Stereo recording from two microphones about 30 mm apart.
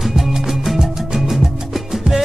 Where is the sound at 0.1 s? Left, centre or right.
Centre.